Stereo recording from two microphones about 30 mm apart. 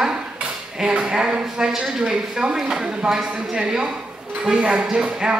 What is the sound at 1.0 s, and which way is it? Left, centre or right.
A woman's voice, right.